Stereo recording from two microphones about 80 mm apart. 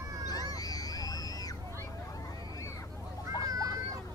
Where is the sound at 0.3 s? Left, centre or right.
Left.